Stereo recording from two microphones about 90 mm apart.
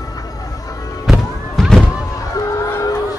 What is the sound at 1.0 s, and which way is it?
Music, centre (ahead or behind).